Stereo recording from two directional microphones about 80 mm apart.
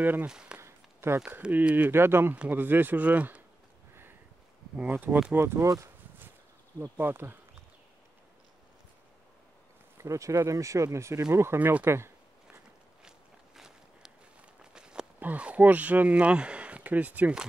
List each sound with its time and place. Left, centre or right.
0.0 s speech: right
0.3 s speech: centre
0.6 s a sound: right
1.4 s speech: centre
1.9 s speech: right
4.7 s speech: right
7.0 s speech: right
9.9 s speech: right
13.6 s walk: centre
15.1 s speech: centre